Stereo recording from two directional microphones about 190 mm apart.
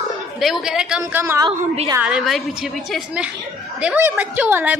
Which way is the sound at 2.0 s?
Centre (ahead or behind).